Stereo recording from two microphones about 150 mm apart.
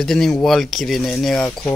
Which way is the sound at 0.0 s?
Centre (ahead or behind).